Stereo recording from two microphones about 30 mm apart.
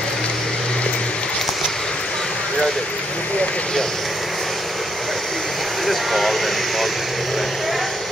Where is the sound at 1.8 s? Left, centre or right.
Centre.